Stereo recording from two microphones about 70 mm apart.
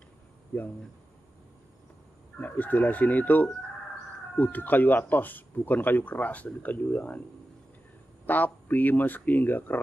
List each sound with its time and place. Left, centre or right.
2.4 s speech: left
8.3 s speech: left